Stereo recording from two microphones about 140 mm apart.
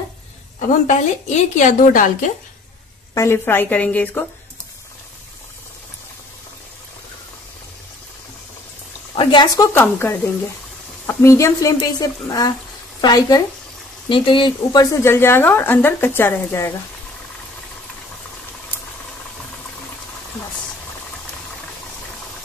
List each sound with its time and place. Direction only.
0.6 s a woman's voice: 60° left (ahead or behind)
3.2 s a woman's voice: 15° left (ahead or behind)
9.1 s speech: 35° left (ahead or behind)
9.8 s a woman's voice: 15° left (ahead or behind)